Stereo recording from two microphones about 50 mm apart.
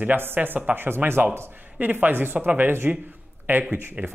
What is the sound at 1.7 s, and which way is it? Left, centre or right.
Speech, right.